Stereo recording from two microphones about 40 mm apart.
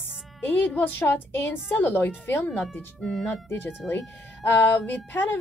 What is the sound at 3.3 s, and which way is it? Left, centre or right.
Speech, left.